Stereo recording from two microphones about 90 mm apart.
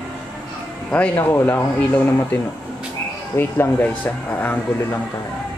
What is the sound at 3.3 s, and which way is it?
Speech, 25° left (ahead or behind).